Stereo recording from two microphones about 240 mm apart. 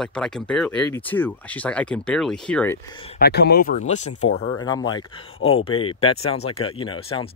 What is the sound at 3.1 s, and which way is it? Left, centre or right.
Speech, left.